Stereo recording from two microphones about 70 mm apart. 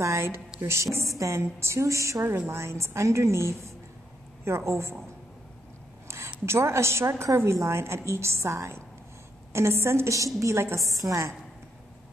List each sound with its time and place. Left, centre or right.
0.0 s a woman's voice: right
6.0 s a sound: right
6.4 s a woman's voice: right